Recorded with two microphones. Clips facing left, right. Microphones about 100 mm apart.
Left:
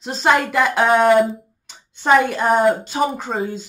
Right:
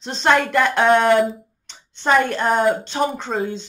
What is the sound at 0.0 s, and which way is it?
Speech, 5° left (ahead or behind).